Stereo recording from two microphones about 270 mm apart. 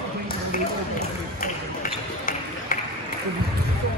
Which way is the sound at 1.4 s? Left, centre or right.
Left.